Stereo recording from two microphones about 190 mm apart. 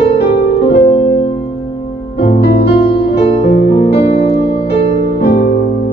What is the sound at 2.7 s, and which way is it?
Music, 60° left (ahead or behind).